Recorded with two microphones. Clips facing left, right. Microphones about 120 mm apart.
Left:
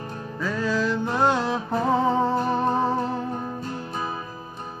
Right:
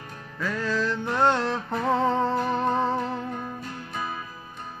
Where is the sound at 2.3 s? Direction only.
30° left (ahead or behind).